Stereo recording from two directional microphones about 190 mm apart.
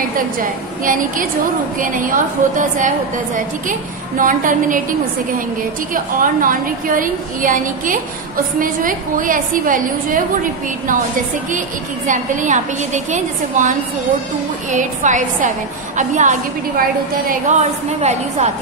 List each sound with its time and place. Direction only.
0.8 s a woman's voice: 45° right (ahead or behind)
4.2 s a woman's voice: 45° right (ahead or behind)
6.4 s a woman's voice: 45° right (ahead or behind)
12.1 s a woman's voice: 40° right (ahead or behind)